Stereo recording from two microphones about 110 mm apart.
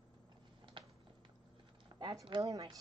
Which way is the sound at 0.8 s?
50° right (ahead or behind).